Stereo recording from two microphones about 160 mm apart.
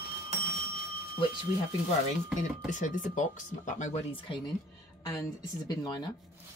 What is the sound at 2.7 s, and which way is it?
Speech, 50° left (ahead or behind).